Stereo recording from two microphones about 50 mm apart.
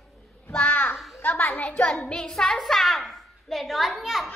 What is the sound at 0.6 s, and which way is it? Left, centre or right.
Speech, left.